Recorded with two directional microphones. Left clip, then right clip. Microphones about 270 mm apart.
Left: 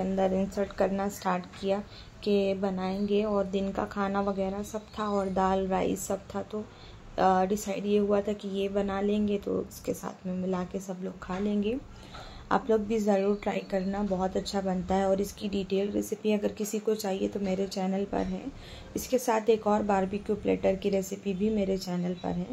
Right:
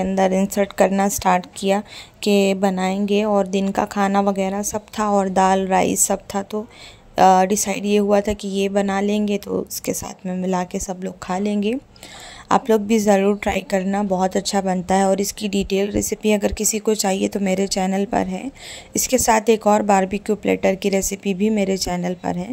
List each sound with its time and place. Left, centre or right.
0.0 s a woman's voice: right